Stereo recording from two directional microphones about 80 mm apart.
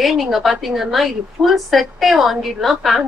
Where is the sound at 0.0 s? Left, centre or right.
Centre.